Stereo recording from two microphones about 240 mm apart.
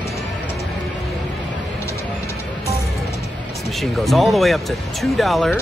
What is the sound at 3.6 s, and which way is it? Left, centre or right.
Speech, centre.